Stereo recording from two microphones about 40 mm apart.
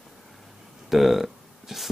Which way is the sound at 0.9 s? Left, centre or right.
Centre.